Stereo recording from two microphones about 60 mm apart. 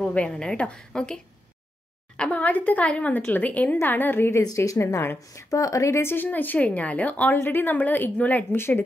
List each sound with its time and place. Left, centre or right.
0.1 s a woman's voice: centre; by 4.4 s left
4.4 s speech: left
4.7 s speech: left
5.9 s a woman's voice: left
8.5 s a woman's voice: left